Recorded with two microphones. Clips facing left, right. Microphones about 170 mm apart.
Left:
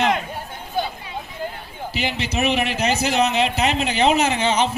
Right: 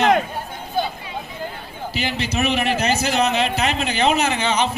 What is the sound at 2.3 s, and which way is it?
A man's voice, 20° left (ahead or behind).